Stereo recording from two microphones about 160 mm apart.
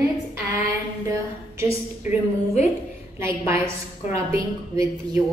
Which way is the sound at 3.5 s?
15° right (ahead or behind).